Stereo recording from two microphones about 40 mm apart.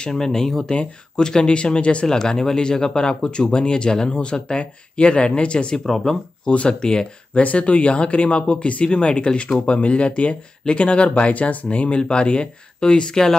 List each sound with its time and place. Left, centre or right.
0.1 s speech: centre; by 2.0 s left
2.0 s speech: centre
5.9 s speech: centre
6.4 s speech: left
7.3 s speech: left; by 13.4 s centre